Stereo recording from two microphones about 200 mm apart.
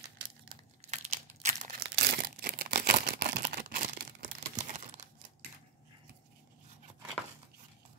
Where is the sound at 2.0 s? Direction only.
50° right (ahead or behind).